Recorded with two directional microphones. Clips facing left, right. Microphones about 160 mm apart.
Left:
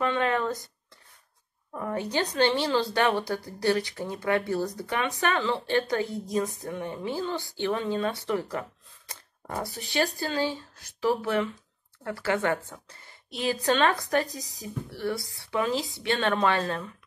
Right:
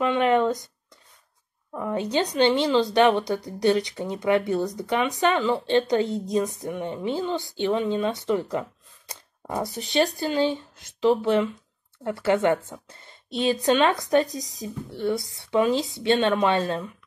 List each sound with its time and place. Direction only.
0.0 s a woman's voice: 20° right (ahead or behind)
1.9 s a woman's voice: 20° right (ahead or behind)